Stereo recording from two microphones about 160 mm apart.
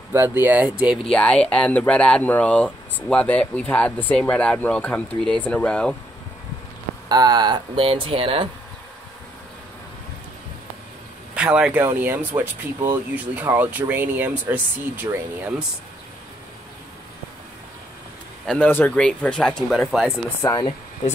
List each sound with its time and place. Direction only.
0.1 s speech: 15° right (ahead or behind)
1.1 s speech: 5° left (ahead or behind)
7.1 s speech: 25° right (ahead or behind)
11.3 s speech: 5° right (ahead or behind)
18.5 s speech: 10° left (ahead or behind)
20.4 s speech: 25° left (ahead or behind)